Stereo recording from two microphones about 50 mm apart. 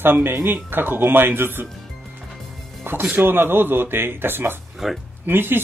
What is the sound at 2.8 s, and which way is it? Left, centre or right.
Speech, right.